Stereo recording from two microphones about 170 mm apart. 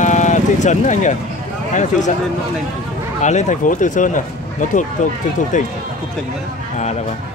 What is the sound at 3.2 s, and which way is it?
Speech, 45° left (ahead or behind).